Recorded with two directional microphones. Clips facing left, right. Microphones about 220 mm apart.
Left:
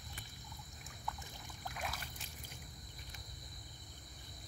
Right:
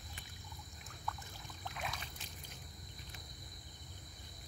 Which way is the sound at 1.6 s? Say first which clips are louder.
Even; 5° left (ahead or behind).